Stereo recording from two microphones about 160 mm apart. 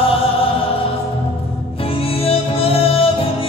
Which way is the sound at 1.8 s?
35° left (ahead or behind).